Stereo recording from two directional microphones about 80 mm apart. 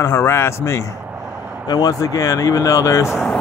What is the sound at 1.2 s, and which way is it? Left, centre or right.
Vehicle, centre.